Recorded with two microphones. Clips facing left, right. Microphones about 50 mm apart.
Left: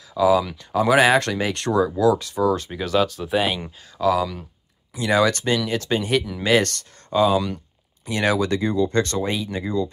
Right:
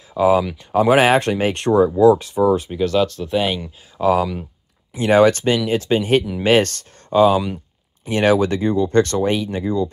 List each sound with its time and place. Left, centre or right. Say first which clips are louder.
0.1 s speech: right 2 dB; right; by 2.7 s centre
2.7 s speech: right 3 dB; centre
4.0 s speech: right 3 dB; right
7.3 s a sound: right 2 dB; centre
8.1 s speech: right 5 dB; right